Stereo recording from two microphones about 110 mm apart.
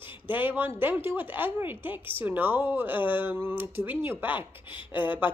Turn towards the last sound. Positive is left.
turn(degrees=-15)  # may be behind; listen again after turning